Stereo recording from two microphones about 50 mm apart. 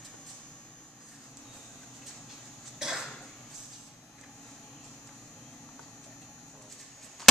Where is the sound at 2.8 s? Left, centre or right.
Centre.